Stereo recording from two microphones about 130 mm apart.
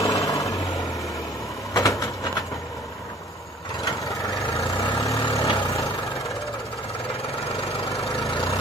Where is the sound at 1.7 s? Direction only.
30° left (ahead or behind).